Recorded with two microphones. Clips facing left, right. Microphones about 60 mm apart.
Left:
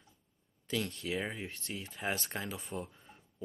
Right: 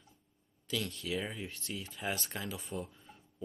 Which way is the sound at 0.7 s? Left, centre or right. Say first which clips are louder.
Left 1 dB; left.